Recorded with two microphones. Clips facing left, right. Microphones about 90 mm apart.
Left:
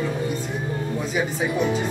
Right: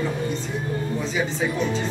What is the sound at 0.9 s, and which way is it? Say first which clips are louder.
Speech: left 1 dB; 10° left (ahead or behind).